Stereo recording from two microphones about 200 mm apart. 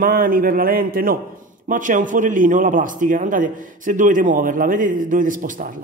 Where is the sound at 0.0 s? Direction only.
45° right (ahead or behind).